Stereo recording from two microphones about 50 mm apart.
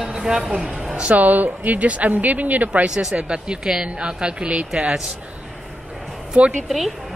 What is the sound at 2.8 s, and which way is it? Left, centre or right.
A woman's voice, centre.